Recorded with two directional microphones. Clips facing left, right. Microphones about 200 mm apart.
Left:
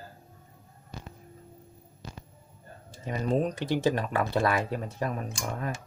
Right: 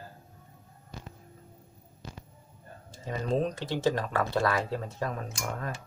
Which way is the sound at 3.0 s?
15° left (ahead or behind).